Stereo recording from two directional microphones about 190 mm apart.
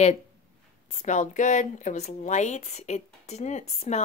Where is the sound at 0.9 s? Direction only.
35° left (ahead or behind).